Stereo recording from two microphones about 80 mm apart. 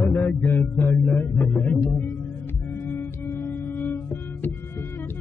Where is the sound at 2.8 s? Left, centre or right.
Left.